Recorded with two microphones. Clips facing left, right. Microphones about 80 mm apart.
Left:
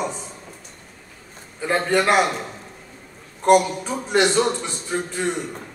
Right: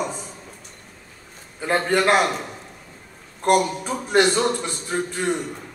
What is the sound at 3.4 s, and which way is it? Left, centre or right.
A man's voice, centre.